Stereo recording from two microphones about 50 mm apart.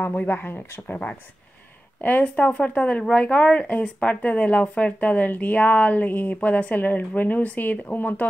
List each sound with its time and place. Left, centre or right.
0.0 s speech: left